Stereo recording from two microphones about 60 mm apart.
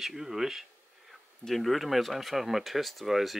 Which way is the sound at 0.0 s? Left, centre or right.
Centre.